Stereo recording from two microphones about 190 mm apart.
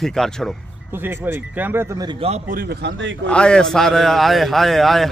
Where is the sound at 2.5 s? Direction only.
55° right (ahead or behind); by 3.1 s 70° right (ahead or behind).